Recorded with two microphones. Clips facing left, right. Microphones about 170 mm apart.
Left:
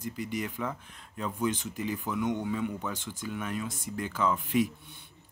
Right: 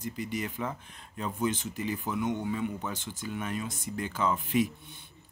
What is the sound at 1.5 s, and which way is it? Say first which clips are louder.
Speech: even; 15° left (ahead or behind).